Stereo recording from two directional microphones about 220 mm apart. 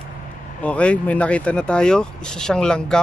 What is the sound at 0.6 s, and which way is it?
Speech, 5° left (ahead or behind).